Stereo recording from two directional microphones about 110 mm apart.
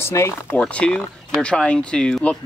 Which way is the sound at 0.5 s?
10° left (ahead or behind).